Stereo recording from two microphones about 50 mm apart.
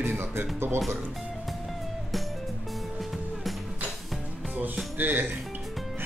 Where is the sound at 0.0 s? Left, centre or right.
Right.